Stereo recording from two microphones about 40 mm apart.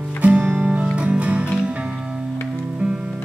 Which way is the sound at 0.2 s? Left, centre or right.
Right.